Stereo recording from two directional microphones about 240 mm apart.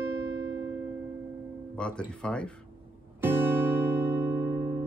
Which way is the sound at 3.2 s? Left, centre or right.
Centre.